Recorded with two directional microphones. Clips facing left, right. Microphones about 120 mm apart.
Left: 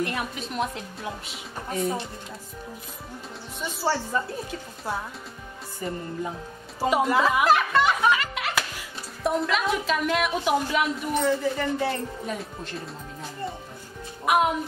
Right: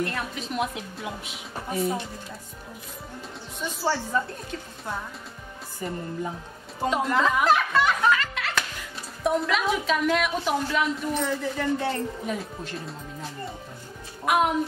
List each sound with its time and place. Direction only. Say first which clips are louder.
0.0 s a woman's voice: left 1 dB; 15° left (ahead or behind)
0.3 s a woman's voice: even; centre (ahead or behind)
3.6 s a woman's voice: even; 5° left (ahead or behind)
6.8 s a woman's voice: left 2 dB; 5° left (ahead or behind)
8.1 s music: even; 15° left (ahead or behind)
9.2 s a woman's voice: right 1 dB; centre (ahead or behind)
14.2 s speech: left 1 dB; 5° left (ahead or behind)